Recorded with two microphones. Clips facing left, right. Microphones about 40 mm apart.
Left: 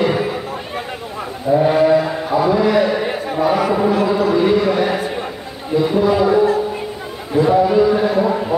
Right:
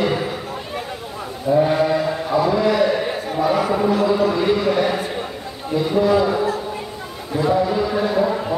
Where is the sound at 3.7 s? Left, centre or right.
Centre.